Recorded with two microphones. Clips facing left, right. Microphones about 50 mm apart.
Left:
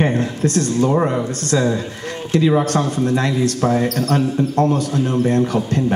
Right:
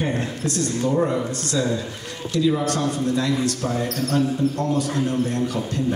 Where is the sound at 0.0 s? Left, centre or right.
Left.